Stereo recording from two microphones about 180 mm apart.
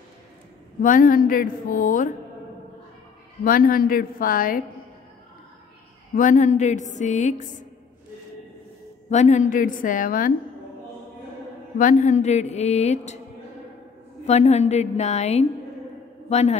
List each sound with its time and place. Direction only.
0.8 s a woman's voice: 50° left (ahead or behind)
3.4 s a woman's voice: 50° left (ahead or behind)
6.1 s a woman's voice: 45° left (ahead or behind)
9.1 s a woman's voice: 40° left (ahead or behind)
11.8 s a woman's voice: 45° left (ahead or behind)
14.2 s a woman's voice: 35° left (ahead or behind)